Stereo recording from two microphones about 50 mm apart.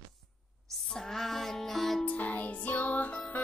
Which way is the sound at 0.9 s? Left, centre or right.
Centre.